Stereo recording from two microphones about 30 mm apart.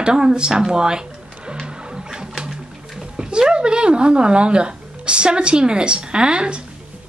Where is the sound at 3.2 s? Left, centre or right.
Right.